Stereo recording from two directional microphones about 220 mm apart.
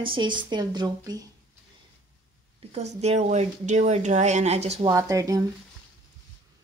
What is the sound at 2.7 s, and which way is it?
Speech, 30° right (ahead or behind).